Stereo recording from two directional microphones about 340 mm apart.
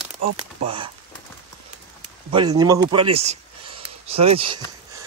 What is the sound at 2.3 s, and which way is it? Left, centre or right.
Speech, centre.